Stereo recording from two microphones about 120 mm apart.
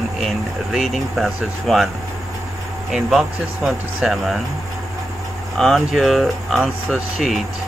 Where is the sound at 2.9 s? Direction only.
Centre (ahead or behind).